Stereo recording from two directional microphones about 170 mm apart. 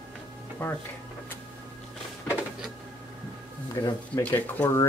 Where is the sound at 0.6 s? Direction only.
10° left (ahead or behind).